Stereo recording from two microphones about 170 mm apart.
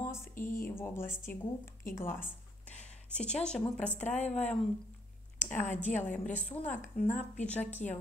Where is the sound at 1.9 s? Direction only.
15° left (ahead or behind).